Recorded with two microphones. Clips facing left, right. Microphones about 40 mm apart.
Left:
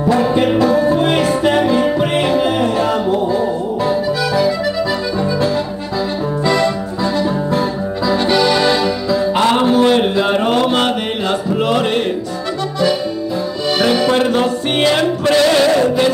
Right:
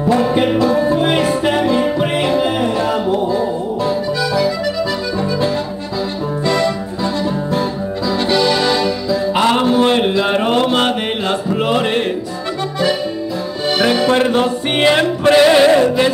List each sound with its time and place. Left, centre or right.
0.7 s music: centre
3.1 s music: left
6.4 s music: centre
8.1 s accordion: centre
9.4 s music: right
9.8 s a sound: right
10.5 s mantra: right
11.6 s a sound: centre
13.7 s music: right